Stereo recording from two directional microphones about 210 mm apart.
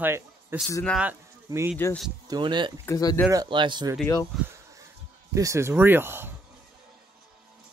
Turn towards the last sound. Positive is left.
turn(degrees=-10)  # may be behind; listen again after turning